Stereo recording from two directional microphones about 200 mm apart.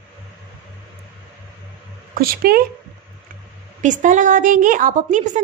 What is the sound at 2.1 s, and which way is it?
Speech, 45° right (ahead or behind).